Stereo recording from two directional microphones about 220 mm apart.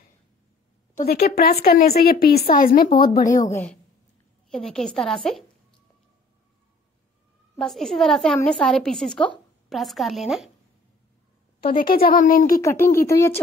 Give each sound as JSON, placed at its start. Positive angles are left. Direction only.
{"t": 0.9, "sound": "a woman's voice", "side_deg": 45}
{"t": 3.3, "sound": "a woman's voice", "side_deg": 10}
{"t": 7.5, "sound": "a woman's voice", "side_deg": 0}
{"t": 11.6, "sound": "a woman's voice", "side_deg": 40}
{"t": 12.6, "sound": "speech", "side_deg": 10}